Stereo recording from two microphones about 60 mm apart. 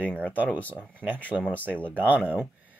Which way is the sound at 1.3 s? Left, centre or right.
Right.